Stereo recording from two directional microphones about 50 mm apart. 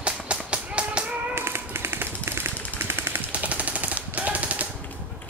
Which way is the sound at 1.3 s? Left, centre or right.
Right.